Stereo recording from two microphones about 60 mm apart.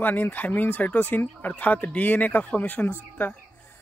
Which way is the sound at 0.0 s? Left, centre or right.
Left.